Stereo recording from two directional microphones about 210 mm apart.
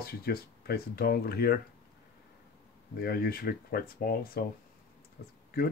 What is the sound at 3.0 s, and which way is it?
Speech, 45° left (ahead or behind).